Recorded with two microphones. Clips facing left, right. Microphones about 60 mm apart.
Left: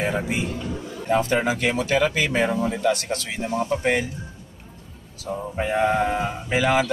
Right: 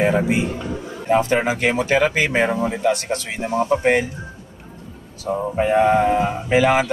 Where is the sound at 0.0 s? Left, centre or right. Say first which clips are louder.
Right 6 dB; right.